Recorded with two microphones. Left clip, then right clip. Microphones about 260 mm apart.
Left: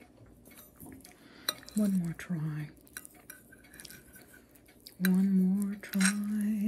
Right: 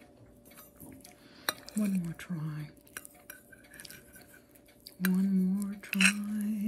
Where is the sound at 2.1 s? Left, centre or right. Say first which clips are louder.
Left 2 dB; centre.